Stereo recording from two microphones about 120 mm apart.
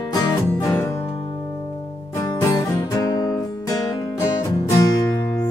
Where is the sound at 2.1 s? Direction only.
25° left (ahead or behind).